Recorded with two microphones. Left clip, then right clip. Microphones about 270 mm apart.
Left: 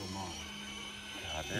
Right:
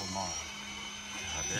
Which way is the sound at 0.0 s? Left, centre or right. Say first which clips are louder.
Right 6 dB; right.